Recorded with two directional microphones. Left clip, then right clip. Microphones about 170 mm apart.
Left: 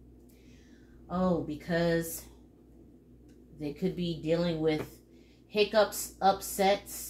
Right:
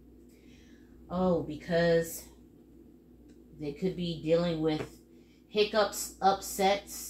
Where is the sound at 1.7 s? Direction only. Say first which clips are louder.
Right 3 dB; 40° left (ahead or behind).